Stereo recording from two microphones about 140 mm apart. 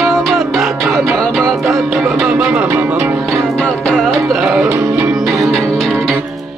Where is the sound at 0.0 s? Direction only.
Centre (ahead or behind).